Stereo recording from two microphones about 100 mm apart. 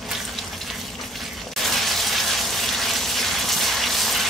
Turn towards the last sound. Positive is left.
turn(degrees=0)  # may be behind; listen again after turning